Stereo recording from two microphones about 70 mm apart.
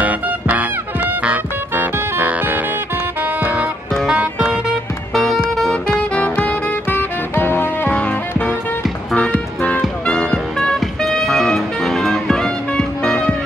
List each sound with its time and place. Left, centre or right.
0.0 s music: right
1.7 s music: right
5.1 s music: centre
5.9 s music: centre
10.0 s music: centre